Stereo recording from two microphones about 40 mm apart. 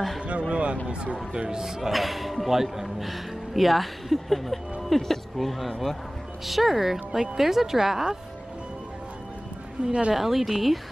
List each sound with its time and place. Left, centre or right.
0.2 s speech: right
1.6 s speech: centre
9.8 s speech: right
10.1 s speech: centre